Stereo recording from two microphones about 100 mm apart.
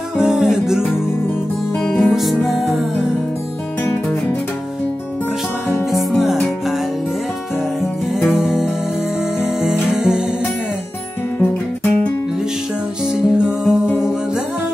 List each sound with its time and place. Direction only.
0.2 s music: 5° right (ahead or behind)
3.8 s music: 20° left (ahead or behind)
5.9 s music: centre (ahead or behind)
8.3 s music: 5° right (ahead or behind)
11.3 s music: 20° left (ahead or behind)
13.1 s music: 10° right (ahead or behind)
13.7 s music: 25° left (ahead or behind)